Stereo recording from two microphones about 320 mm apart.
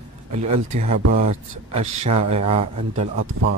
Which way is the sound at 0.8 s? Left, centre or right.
Right.